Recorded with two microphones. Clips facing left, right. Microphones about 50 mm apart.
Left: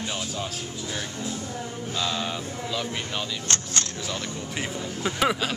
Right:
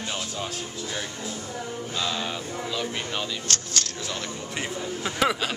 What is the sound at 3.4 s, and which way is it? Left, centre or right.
Speech, left.